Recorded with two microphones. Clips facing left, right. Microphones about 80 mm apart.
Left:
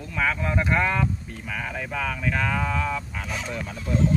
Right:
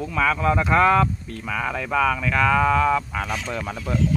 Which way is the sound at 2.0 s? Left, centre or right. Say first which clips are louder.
Right 5 dB; right.